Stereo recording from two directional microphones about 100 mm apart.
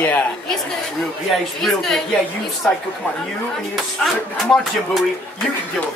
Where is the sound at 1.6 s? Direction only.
5° left (ahead or behind).